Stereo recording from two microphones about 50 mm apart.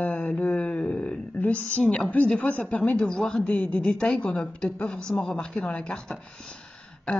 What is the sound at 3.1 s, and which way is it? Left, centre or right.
Speech, centre.